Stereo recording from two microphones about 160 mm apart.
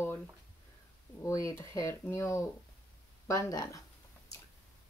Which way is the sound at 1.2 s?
20° left (ahead or behind).